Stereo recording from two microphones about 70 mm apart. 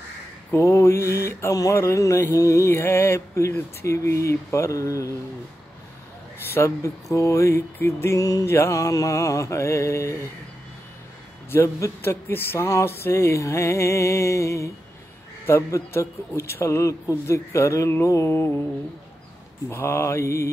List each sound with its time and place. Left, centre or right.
0.5 s a man's voice: left
1.5 s music: left
1.8 s a sound: left
6.5 s a man's voice: left
8.2 s music: left
8.5 s a sound: left
11.5 s a man's voice: left
12.8 s a sound: left
15.4 s a man's voice: left
19.7 s a man's voice: left